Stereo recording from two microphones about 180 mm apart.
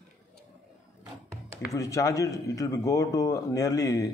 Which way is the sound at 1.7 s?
20° left (ahead or behind).